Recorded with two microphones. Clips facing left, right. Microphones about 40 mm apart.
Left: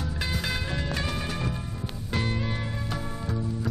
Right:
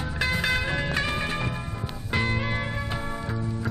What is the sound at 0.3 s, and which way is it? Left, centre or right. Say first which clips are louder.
Music: right 7 dB; right.